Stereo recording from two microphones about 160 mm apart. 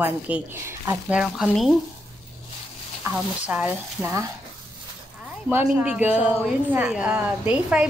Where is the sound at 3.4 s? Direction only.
5° right (ahead or behind).